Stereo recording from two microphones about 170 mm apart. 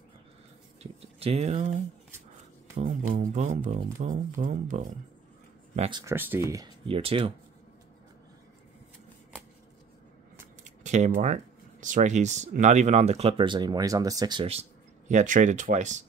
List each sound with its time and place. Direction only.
1.2 s speech: 40° right (ahead or behind)
5.8 s speech: 25° right (ahead or behind)
6.1 s speech: 10° right (ahead or behind)
6.9 s speech: 35° right (ahead or behind)
10.6 s a sound: 45° right (ahead or behind)
11.8 s speech: 45° right (ahead or behind)